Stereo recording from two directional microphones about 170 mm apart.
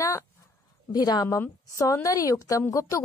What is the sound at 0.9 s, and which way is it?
A woman's voice, 25° left (ahead or behind).